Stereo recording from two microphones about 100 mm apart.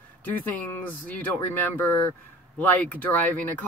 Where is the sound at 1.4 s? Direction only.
20° left (ahead or behind).